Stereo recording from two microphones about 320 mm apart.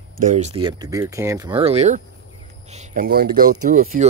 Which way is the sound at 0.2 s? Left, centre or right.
Right.